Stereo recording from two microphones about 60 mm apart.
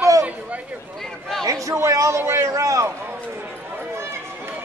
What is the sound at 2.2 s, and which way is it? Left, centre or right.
Speech, right.